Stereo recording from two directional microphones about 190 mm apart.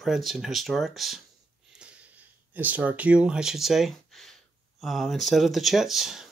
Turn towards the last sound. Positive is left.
turn(degrees=0)  # may be behind; listen again after turning